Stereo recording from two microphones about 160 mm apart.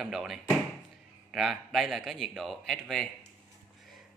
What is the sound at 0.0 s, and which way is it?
A man's voice, centre (ahead or behind).